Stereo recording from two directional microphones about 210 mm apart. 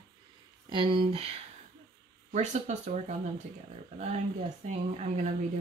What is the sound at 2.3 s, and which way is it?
Speech, 35° right (ahead or behind).